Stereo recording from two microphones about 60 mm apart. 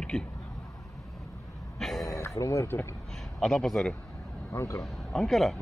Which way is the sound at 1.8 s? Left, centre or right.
Centre.